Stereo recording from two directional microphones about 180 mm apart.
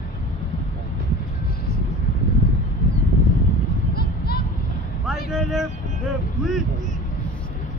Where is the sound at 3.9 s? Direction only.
60° left (ahead or behind).